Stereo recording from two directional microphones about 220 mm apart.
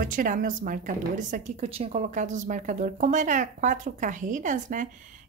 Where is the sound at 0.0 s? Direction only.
40° right (ahead or behind).